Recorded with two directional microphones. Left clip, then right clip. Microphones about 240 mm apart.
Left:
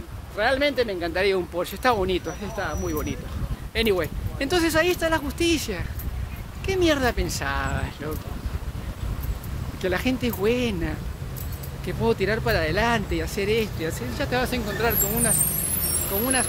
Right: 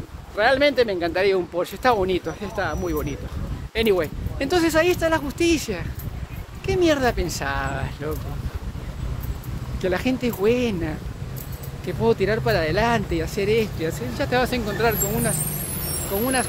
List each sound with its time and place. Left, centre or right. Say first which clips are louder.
0.4 s speech: right 4 dB; centre
1.2 s speech: right 1 dB; centre
2.4 s speech: right 3 dB; centre
9.8 s speech: right 2 dB; centre
15.3 s vehicle: left 1 dB; left
16.2 s speech: right 3 dB; centre